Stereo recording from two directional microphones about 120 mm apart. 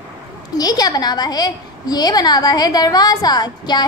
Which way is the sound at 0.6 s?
30° left (ahead or behind).